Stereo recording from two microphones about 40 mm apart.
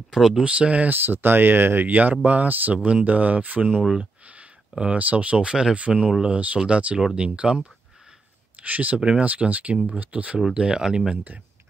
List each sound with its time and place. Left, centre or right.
0.1 s speech: centre
0.4 s speech: right
0.8 s speech: right
1.9 s speech: right
2.7 s speech: right
8.6 s speech: right
10.5 s speech: right